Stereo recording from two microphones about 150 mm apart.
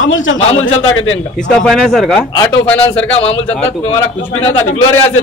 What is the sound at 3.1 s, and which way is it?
Speech, 40° left (ahead or behind).